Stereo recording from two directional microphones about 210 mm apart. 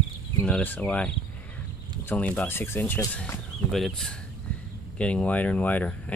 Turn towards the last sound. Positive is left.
turn(degrees=5)  # may be behind; listen again after turning